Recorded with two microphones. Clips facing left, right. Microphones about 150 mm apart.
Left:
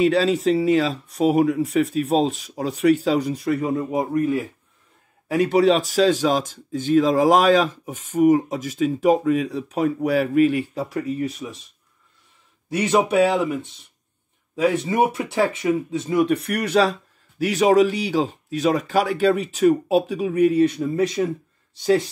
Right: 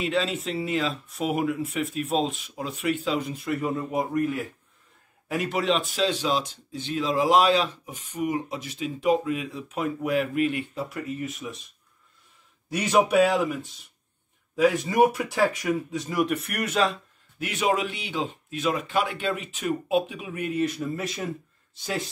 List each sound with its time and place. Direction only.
0.1 s speech: 35° left (ahead or behind)
12.7 s speech: 20° left (ahead or behind)